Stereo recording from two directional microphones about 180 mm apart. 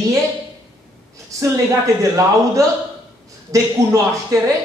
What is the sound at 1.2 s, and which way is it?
A man's voice, 15° right (ahead or behind).